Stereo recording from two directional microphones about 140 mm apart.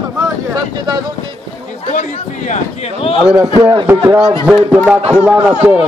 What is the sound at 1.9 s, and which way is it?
A man's voice, 60° left (ahead or behind).